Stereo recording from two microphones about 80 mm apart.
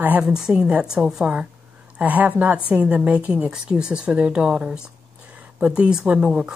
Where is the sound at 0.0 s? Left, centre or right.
Right.